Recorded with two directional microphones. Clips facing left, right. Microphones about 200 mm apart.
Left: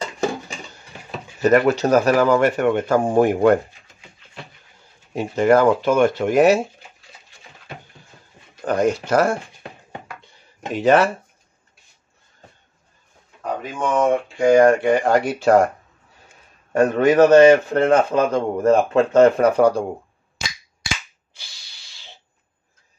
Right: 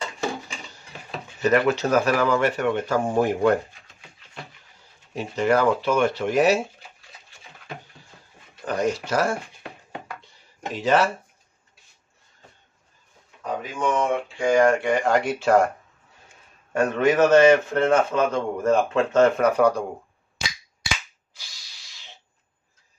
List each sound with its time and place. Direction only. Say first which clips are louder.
1.4 s speech: left 4 dB; 45° left (ahead or behind)
5.1 s speech: left 6 dB; 50° left (ahead or behind)
8.6 s a sound: left 5 dB; 55° left (ahead or behind)
10.7 s speech: left 5 dB; 55° left (ahead or behind)
13.7 s speech: left 5 dB; 45° left (ahead or behind)
16.7 s speech: left 5 dB; 35° left (ahead or behind)
21.3 s a sound: left 2 dB; 30° left (ahead or behind)